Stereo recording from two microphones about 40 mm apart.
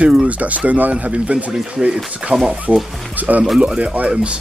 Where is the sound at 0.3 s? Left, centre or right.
Right.